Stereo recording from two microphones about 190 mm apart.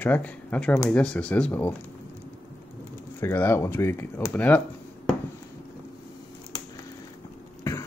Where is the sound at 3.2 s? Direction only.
10° left (ahead or behind).